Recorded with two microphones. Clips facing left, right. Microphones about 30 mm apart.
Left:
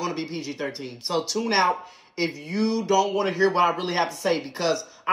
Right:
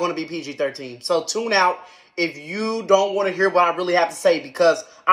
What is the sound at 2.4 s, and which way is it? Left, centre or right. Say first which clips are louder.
Speech: right 1 dB; right.